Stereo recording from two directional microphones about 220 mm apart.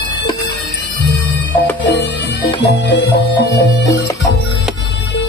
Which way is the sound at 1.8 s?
50° left (ahead or behind).